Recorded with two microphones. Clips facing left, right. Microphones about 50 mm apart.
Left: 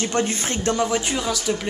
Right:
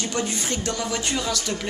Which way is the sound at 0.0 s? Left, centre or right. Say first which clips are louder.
Left 4 dB; left.